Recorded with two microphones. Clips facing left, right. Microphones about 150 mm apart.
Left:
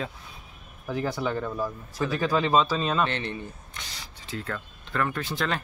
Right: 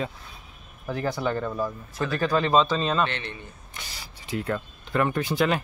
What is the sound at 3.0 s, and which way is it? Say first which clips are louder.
Speech: left 1 dB; 35° left (ahead or behind).